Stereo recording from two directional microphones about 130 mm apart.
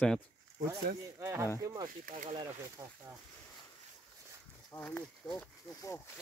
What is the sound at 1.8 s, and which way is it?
Speech, 80° right.